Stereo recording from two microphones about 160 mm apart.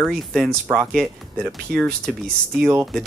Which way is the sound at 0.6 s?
10° right (ahead or behind).